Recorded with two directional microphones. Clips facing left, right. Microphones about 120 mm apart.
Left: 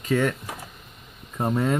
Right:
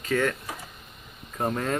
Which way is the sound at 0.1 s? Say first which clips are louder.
Left 2 dB; 20° left (ahead or behind).